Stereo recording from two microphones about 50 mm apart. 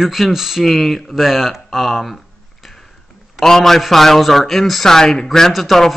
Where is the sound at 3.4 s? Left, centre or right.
Centre.